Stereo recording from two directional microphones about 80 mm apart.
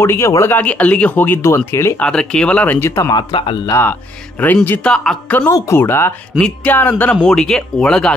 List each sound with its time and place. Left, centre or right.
0.0 s speech: left
0.5 s speech: centre; by 2.0 s left
2.0 s speech: centre
2.9 s speech: left
3.2 s speech: left
3.8 s speech: left
4.8 s speech: centre
5.5 s speech: left
6.3 s speech: centre
7.2 s speech: centre